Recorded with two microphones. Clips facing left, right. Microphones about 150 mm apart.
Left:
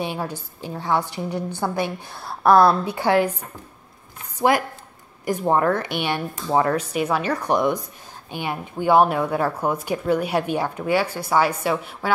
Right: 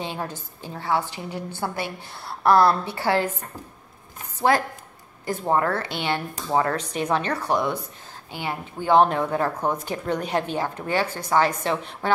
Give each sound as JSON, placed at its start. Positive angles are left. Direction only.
{"t": 0.0, "sound": "speech", "side_deg": 15}
{"t": 0.8, "sound": "a woman's voice", "side_deg": -10}
{"t": 1.5, "sound": "speech", "side_deg": 15}
{"t": 6.8, "sound": "speech", "side_deg": 10}